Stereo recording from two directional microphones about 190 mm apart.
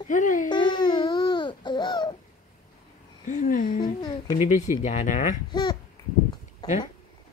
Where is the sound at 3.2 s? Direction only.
45° left (ahead or behind).